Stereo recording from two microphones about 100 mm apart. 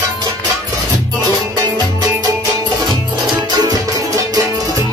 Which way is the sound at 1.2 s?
40° right (ahead or behind).